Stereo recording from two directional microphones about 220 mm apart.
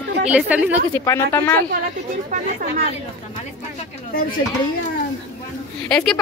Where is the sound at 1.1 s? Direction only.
15° left (ahead or behind).